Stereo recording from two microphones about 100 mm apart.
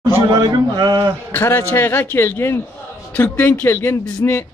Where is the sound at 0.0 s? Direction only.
45° right (ahead or behind).